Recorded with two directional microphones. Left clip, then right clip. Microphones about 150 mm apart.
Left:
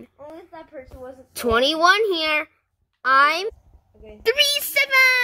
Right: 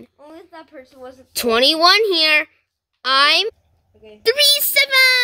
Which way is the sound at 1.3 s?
30° right (ahead or behind).